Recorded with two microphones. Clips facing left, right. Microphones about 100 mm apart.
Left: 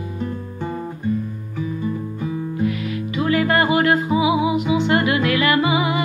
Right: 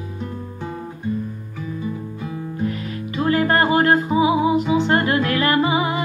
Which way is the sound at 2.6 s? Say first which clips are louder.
Left 2 dB; 40° right (ahead or behind).